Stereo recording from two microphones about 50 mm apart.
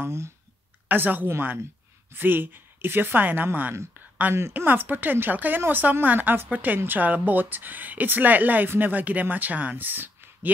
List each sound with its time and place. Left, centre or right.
0.0 s speech: right
0.8 s a woman's voice: right
4.3 s speech: right
4.6 s speech: right